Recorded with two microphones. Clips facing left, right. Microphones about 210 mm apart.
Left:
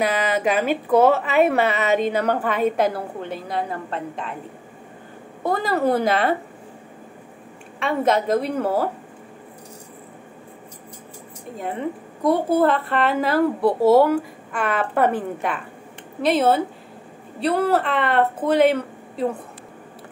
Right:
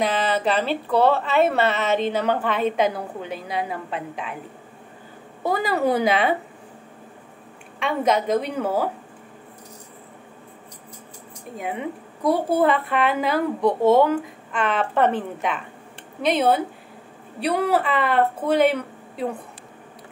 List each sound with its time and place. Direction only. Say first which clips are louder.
0.0 s a woman's voice: left 1 dB; 10° left (ahead or behind)
5.4 s a woman's voice: left 1 dB; centre (ahead or behind)
7.8 s a woman's voice: left 1 dB; centre (ahead or behind)
12.3 s a woman's voice: left 1 dB; centre (ahead or behind)